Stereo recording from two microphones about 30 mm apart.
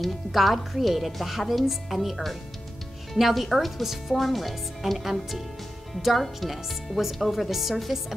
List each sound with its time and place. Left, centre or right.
0.0 s speech: centre
3.2 s speech: centre